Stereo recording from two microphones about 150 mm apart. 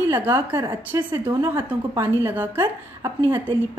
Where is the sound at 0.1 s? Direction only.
15° right (ahead or behind).